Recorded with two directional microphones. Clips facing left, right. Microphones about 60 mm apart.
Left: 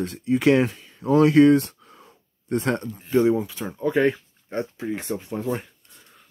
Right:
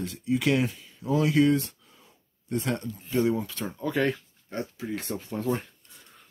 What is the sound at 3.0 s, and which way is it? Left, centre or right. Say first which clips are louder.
Speech: left 6 dB; left.